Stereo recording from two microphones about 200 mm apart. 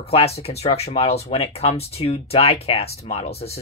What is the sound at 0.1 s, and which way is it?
Speech, 30° left (ahead or behind).